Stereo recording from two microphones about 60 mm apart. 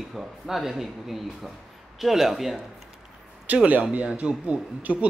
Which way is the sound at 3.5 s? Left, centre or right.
Right.